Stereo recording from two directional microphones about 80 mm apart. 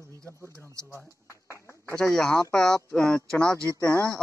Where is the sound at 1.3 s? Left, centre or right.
Left.